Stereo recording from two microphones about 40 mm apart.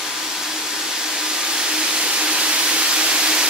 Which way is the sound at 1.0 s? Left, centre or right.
Centre.